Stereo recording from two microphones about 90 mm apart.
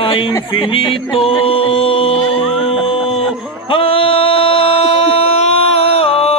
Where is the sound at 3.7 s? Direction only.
90° left.